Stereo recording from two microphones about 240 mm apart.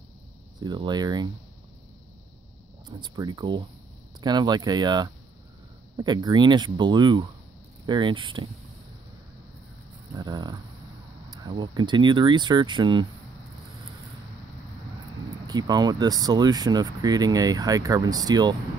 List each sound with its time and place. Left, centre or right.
0.6 s speech: centre
2.9 s speech: centre
10.1 s speech: centre
15.4 s speech: centre